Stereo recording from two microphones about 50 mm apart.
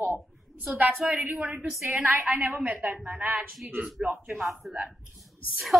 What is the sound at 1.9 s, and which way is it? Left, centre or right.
A woman's voice, right.